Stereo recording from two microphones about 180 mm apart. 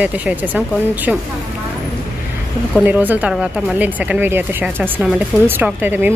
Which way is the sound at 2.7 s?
10° right (ahead or behind).